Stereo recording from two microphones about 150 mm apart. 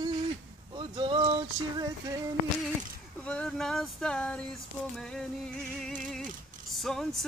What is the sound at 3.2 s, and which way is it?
Music, 5° left (ahead or behind).